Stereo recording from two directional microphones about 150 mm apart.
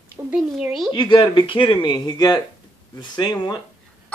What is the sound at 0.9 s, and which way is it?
Speech, 30° left (ahead or behind).